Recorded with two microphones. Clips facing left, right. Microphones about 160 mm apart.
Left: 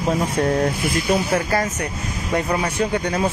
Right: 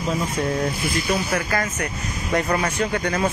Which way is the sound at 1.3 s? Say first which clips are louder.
Left 3 dB; 30° left (ahead or behind).